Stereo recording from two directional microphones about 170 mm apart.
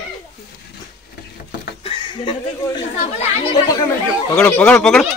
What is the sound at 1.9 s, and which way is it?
Speech, 30° left (ahead or behind).